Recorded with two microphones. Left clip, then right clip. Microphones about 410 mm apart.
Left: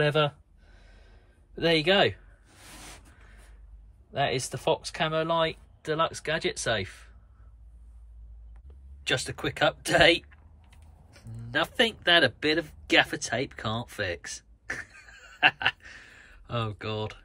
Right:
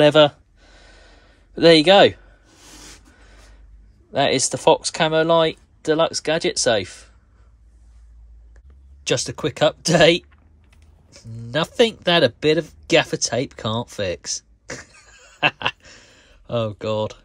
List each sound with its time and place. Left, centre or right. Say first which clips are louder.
0.0 s speech: right 12 dB; centre
0.7 s a sound: right 11 dB; centre
4.1 s speech: right 9 dB; centre
9.0 s speech: right 7 dB; centre